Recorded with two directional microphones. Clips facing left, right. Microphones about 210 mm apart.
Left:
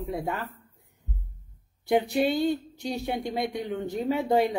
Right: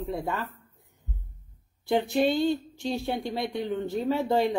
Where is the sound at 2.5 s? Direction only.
45° left (ahead or behind).